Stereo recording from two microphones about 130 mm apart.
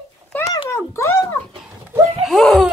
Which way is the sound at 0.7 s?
20° left (ahead or behind).